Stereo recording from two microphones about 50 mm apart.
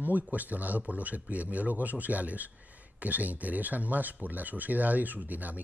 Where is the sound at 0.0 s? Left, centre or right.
Right.